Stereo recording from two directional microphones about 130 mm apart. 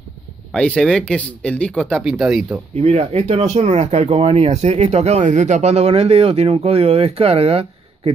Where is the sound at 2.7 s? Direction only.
50° right (ahead or behind).